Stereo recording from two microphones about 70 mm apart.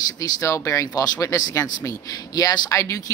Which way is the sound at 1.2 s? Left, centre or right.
Left.